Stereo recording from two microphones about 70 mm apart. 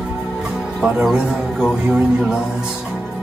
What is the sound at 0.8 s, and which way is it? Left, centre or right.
Speech, centre.